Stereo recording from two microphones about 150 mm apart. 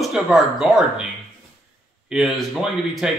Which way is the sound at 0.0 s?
Centre (ahead or behind).